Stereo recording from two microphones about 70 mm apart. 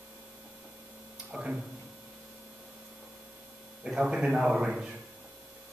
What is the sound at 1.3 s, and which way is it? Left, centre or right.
Speech, centre.